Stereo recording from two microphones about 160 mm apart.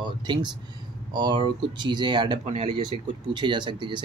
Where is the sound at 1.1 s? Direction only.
30° right (ahead or behind).